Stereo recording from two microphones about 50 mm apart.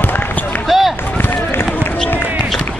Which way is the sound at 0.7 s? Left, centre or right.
Centre.